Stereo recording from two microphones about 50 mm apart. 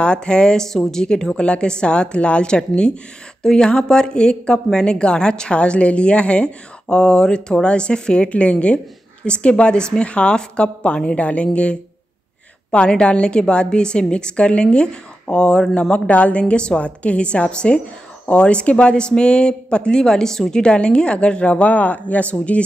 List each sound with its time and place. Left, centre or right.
0.0 s a woman's voice: centre
15.9 s a woman's voice: left